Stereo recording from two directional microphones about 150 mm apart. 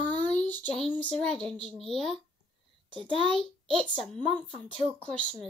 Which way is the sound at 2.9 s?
35° right (ahead or behind).